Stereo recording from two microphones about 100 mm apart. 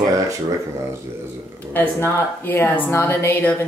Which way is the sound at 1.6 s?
20° left (ahead or behind).